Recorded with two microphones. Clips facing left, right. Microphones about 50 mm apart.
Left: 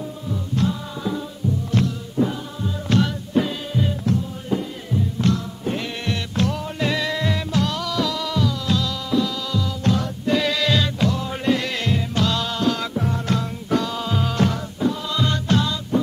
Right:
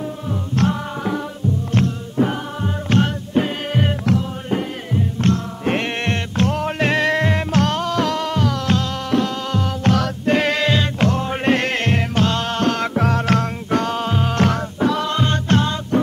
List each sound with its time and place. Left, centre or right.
0.3 s music: right
1.7 s music: right
3.7 s music: right
4.5 s music: right
14.4 s music: right
15.0 s music: right